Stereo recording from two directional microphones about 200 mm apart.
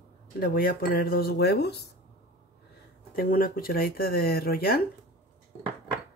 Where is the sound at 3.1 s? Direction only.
45° left (ahead or behind).